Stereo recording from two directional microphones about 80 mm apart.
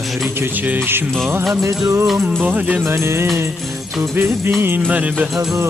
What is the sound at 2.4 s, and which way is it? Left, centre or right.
Music, centre.